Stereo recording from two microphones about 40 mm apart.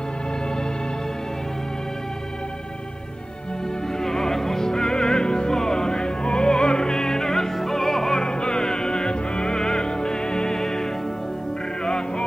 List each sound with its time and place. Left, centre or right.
4.0 s music: centre
8.3 s music: centre